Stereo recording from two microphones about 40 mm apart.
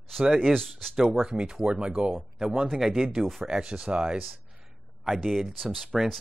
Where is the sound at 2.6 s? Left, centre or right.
Centre.